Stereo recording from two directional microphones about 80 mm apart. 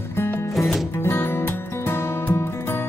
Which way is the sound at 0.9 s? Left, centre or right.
Left.